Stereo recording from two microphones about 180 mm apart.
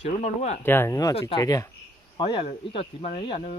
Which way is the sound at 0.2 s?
40° left (ahead or behind).